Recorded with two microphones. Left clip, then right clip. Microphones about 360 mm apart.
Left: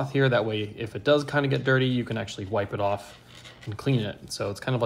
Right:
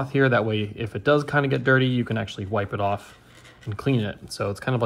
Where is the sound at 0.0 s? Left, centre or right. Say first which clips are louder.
Right 3 dB; right.